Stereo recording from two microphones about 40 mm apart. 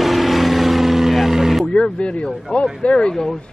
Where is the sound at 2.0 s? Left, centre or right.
Left.